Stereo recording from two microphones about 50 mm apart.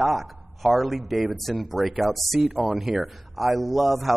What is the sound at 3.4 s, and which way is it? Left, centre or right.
Speech, right.